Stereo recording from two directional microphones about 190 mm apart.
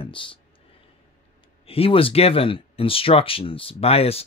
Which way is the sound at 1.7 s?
30° left (ahead or behind).